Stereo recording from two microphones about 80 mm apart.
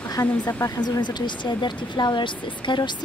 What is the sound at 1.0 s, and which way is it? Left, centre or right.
Speech, left.